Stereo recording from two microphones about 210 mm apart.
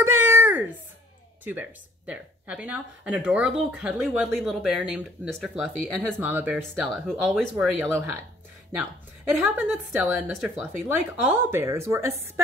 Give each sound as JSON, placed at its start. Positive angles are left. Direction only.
{"t": 0.0, "sound": "a sound", "side_deg": -10}
{"t": 1.4, "sound": "speech", "side_deg": -10}
{"t": 9.3, "sound": "speech", "side_deg": 0}